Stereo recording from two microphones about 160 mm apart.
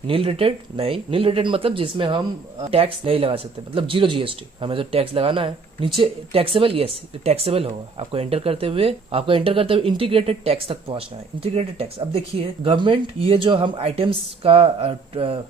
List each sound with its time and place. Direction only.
0.0 s speech: 35° right (ahead or behind)